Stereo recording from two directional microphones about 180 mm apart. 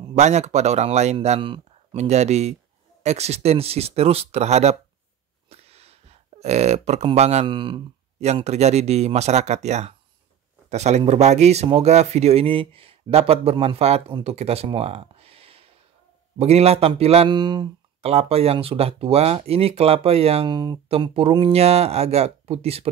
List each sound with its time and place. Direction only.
0.1 s speech: 40° right (ahead or behind)